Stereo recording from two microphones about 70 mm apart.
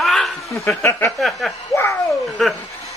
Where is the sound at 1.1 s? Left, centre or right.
Centre.